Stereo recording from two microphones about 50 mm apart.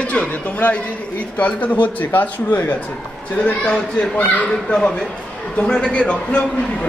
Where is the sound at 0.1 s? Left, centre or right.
Left.